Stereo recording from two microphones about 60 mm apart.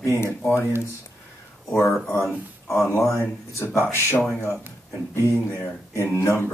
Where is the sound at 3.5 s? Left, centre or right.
Left.